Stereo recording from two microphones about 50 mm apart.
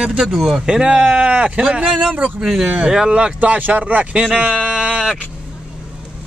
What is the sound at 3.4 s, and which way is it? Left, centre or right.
Speech, right.